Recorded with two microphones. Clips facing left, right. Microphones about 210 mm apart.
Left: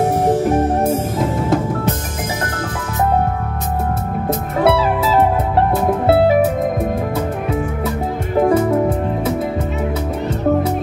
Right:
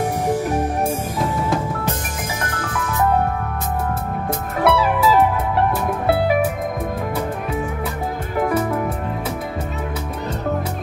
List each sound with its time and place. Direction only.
4.6 s music: 25° left (ahead or behind)
8.4 s music: 25° left (ahead or behind)